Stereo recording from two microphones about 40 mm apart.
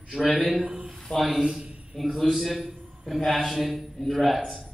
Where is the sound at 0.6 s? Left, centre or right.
Right.